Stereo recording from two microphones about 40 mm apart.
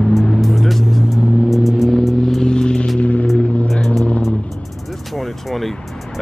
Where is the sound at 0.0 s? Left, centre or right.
Centre.